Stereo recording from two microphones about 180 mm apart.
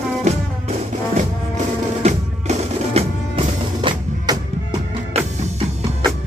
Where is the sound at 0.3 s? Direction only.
40° right (ahead or behind).